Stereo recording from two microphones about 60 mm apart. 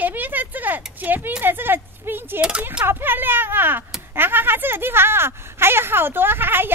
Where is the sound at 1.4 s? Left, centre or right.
Right.